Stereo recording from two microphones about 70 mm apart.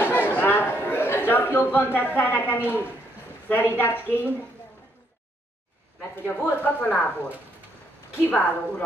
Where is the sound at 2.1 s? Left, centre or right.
Left.